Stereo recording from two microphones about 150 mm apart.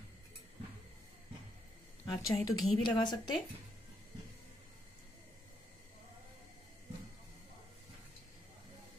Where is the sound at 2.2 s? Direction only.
25° left (ahead or behind).